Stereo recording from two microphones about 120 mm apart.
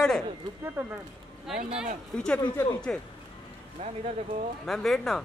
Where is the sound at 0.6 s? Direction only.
15° right (ahead or behind).